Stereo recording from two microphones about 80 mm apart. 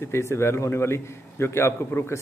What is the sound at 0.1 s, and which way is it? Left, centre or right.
A man's voice, left.